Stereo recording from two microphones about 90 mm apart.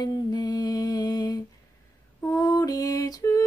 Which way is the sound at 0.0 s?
50° left (ahead or behind).